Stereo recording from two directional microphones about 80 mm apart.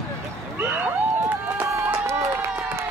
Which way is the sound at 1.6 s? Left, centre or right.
Right.